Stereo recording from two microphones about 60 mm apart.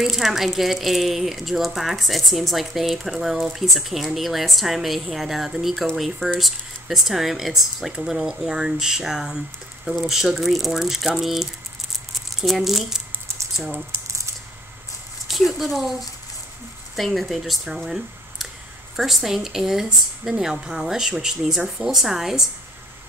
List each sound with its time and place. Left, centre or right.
0.0 s speech: centre
13.9 s a sound: right
15.2 s speech: centre